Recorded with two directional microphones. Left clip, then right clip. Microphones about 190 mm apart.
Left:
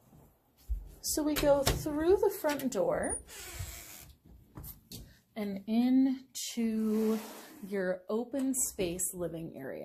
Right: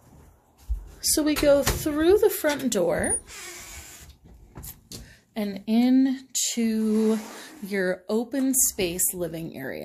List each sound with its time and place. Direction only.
1.0 s a woman's voice: 35° right (ahead or behind)
5.3 s a woman's voice: 25° right (ahead or behind)